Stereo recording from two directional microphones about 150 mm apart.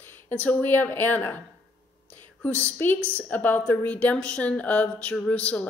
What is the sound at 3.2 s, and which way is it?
Speech, 10° left (ahead or behind).